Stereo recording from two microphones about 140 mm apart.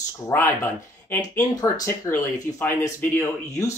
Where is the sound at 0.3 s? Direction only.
15° left (ahead or behind).